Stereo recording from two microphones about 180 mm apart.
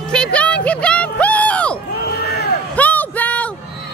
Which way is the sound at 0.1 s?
5° left (ahead or behind).